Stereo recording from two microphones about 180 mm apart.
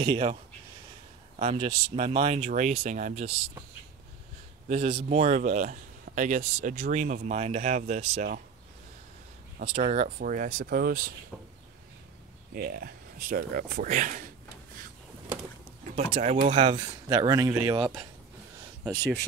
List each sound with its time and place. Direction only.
0.0 s speech: 30° right (ahead or behind)
1.4 s speech: 35° right (ahead or behind)
4.6 s speech: 40° right (ahead or behind)
9.6 s speech: 45° right (ahead or behind)
12.5 s speech: 55° right (ahead or behind)
16.1 s speech: 35° right (ahead or behind)
16.5 s speech: 25° right (ahead or behind)